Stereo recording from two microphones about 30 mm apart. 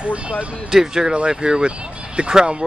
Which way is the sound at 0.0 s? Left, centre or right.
Right.